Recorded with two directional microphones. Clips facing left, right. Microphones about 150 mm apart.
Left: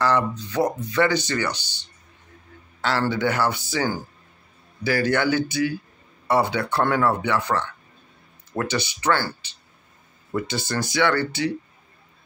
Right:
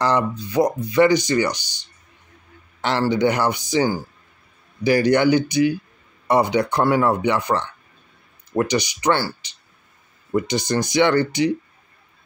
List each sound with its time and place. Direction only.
0.0 s speech: 15° right (ahead or behind)